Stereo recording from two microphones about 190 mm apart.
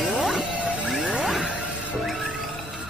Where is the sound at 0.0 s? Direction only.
Centre (ahead or behind).